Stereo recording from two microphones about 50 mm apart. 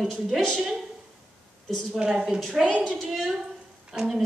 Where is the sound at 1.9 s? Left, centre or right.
Centre.